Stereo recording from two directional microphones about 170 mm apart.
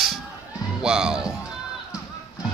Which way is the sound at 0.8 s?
5° right (ahead or behind).